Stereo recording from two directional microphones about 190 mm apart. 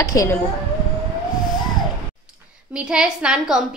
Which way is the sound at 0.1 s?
15° left (ahead or behind).